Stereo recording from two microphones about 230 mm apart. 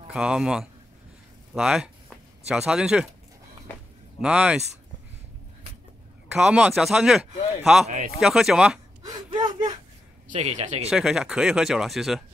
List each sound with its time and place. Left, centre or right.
0.1 s speech: centre
4.2 s speech: centre
6.3 s speech: centre
9.0 s a sound: centre
10.3 s speech: right
10.9 s speech: centre